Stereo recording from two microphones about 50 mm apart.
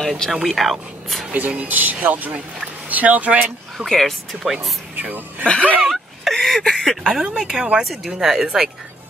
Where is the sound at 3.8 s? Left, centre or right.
Centre.